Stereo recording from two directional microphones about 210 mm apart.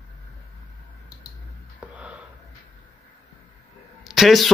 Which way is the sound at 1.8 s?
5° right (ahead or behind).